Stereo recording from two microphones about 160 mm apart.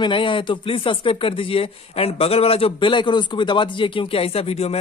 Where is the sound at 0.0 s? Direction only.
30° left (ahead or behind).